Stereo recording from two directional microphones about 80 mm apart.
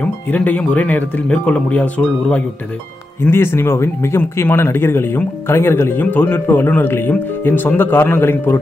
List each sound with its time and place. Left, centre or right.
0.0 s speech: centre
3.3 s speech: left